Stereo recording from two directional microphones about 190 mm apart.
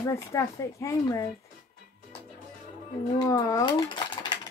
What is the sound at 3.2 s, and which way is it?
Speech, 20° left (ahead or behind).